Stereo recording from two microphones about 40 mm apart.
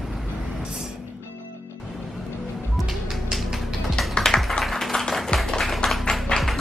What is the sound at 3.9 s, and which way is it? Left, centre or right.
Typing, centre.